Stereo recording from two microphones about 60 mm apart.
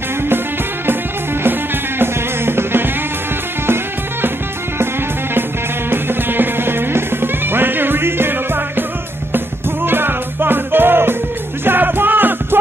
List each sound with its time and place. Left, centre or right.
1.4 s music: right
5.9 s music: right
9.8 s music: right